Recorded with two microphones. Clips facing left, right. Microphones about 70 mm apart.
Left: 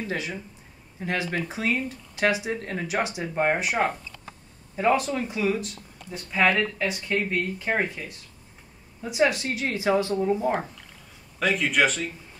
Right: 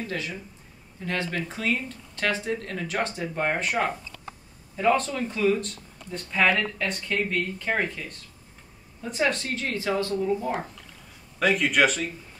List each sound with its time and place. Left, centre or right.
0.1 s speech: left
11.3 s speech: centre